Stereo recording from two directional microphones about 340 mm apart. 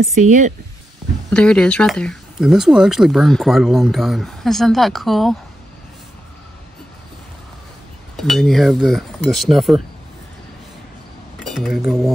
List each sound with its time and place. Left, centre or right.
0.0 s speech: right
1.3 s speech: centre
8.2 s speech: centre
11.4 s speech: centre